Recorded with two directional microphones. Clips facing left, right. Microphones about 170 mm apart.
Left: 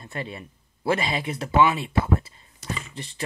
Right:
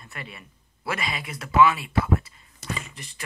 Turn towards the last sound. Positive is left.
turn(degrees=30)  # may be behind; listen again after turning